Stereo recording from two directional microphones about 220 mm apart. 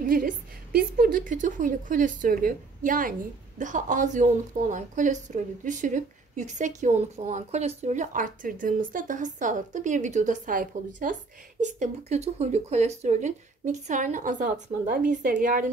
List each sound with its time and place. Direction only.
0.7 s speech: 45° right (ahead or behind)